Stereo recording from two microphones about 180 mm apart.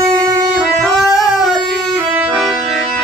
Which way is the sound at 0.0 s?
20° right (ahead or behind).